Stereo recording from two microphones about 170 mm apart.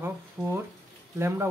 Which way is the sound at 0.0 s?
15° right (ahead or behind).